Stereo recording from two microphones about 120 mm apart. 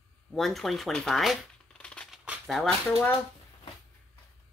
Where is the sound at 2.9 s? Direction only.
10° left (ahead or behind).